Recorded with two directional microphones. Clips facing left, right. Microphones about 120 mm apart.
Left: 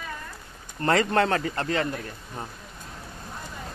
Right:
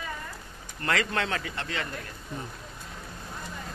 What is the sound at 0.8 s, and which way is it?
Speech, 35° left (ahead or behind).